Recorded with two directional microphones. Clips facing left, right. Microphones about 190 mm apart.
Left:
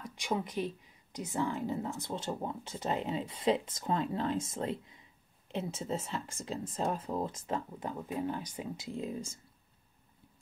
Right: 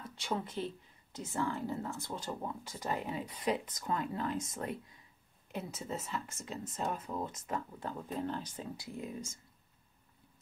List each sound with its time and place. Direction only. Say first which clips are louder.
0.0 s speech: left 3 dB; 15° left (ahead or behind)
7.9 s speech: left 2 dB; 10° left (ahead or behind); by 9.4 s 30° left (ahead or behind)